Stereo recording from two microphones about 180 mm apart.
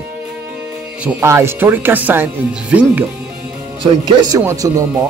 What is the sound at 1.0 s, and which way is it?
Speech, 15° right (ahead or behind).